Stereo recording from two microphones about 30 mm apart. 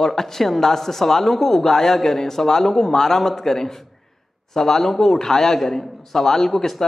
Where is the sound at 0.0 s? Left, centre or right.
Centre.